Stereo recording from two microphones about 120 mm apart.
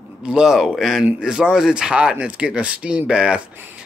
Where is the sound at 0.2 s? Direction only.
5° right (ahead or behind).